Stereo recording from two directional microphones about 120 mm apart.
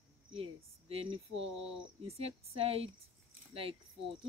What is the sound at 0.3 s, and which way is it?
Speech, 55° right (ahead or behind).